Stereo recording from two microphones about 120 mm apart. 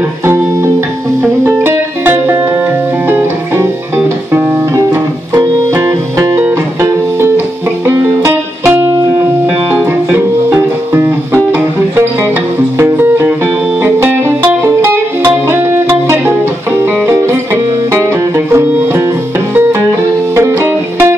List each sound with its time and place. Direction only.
1.2 s music: 20° right (ahead or behind)
5.3 s music: 25° right (ahead or behind)
18.5 s music: 20° right (ahead or behind)
20.3 s music: 25° right (ahead or behind)